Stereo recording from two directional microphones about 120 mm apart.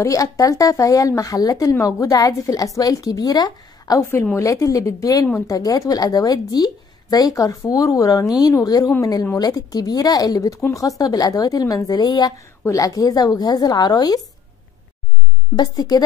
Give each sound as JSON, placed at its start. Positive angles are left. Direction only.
{"t": 0.0, "sound": "a woman's voice", "side_deg": 25}
{"t": 4.0, "sound": "a woman's voice", "side_deg": 20}
{"t": 15.5, "sound": "speech", "side_deg": 35}